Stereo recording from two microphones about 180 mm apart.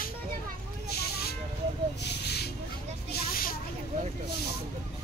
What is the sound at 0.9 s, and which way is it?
Vehicle, 60° left (ahead or behind).